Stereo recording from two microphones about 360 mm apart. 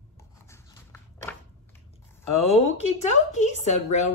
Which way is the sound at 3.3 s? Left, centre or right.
Centre.